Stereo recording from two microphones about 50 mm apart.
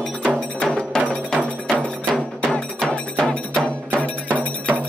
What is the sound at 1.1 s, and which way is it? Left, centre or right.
Music, left.